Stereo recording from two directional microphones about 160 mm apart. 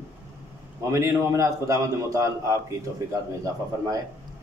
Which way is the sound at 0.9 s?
20° right (ahead or behind).